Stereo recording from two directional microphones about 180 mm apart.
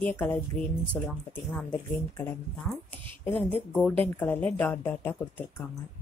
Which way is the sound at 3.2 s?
10° left (ahead or behind).